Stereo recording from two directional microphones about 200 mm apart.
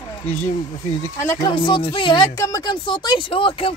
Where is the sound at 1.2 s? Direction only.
15° left (ahead or behind).